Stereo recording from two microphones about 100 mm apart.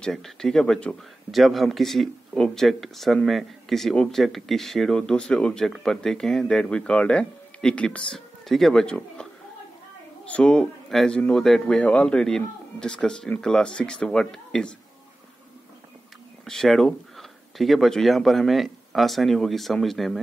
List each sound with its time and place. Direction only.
0.0 s a man's voice: 5° left (ahead or behind)
16.4 s speech: 5° left (ahead or behind)